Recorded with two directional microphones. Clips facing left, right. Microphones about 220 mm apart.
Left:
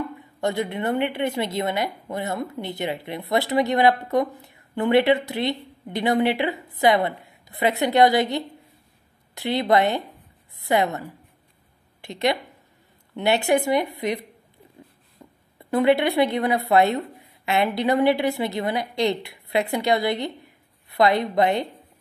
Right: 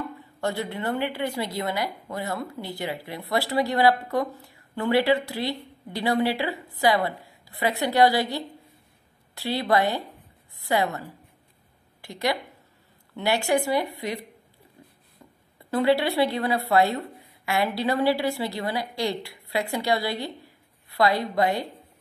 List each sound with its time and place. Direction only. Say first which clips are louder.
0.2 s a woman's voice: left 4 dB; 20° left (ahead or behind)
12.0 s a woman's voice: left 4 dB; 20° left (ahead or behind)
14.8 s a sound: left 4 dB; 25° left (ahead or behind)
15.7 s a woman's voice: left 3 dB; 20° left (ahead or behind)